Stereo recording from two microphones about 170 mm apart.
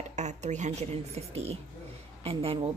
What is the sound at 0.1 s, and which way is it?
Speech, 45° right (ahead or behind).